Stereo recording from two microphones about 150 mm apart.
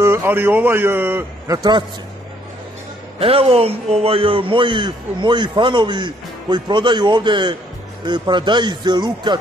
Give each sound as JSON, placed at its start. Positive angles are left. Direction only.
{"t": 0.0, "sound": "a man's voice", "side_deg": -15}
{"t": 1.6, "sound": "speech", "side_deg": -30}
{"t": 3.2, "sound": "a man's voice", "side_deg": -40}